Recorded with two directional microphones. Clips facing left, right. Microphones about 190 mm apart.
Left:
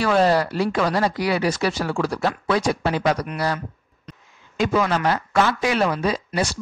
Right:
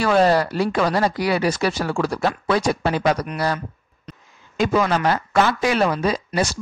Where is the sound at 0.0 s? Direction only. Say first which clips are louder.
Right 1 dB; 45° right (ahead or behind).